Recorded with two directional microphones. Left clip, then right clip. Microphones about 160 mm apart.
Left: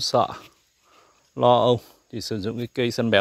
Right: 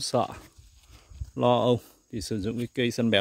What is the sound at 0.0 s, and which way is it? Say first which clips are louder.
Speech: left 6 dB; 25° right (ahead or behind).